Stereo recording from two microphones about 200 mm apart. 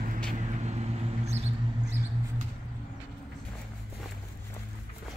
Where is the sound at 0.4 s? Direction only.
35° right (ahead or behind).